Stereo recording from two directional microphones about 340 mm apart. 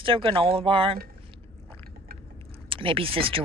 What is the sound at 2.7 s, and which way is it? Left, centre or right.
Speech, centre.